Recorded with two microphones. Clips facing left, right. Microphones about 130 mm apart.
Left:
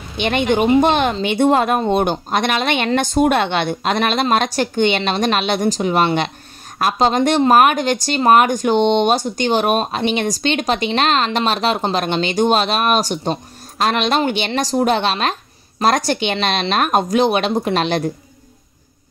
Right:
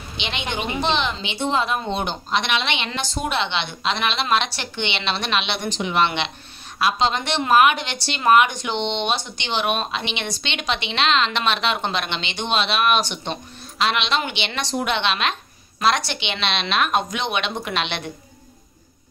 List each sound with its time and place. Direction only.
0.2 s speech: 50° left (ahead or behind)